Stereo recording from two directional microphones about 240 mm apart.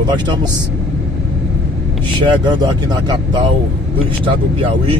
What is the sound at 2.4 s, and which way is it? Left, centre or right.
Speech, centre.